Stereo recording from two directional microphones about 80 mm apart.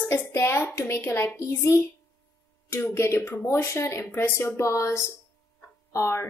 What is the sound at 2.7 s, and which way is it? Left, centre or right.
A woman's voice, left.